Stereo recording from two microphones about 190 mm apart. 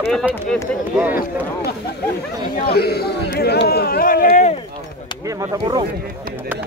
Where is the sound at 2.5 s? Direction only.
55° left (ahead or behind).